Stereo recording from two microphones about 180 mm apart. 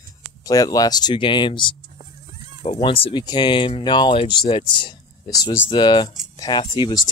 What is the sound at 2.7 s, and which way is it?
Speech, 30° left (ahead or behind).